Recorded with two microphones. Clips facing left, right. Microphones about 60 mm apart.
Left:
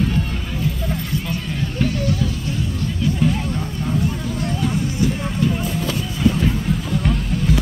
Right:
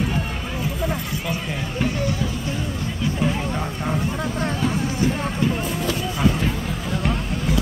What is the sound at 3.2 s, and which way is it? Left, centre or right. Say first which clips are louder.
Music: left 1 dB; centre.